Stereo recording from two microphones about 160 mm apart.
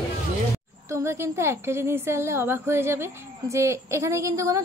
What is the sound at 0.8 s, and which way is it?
A woman's voice, 15° right (ahead or behind).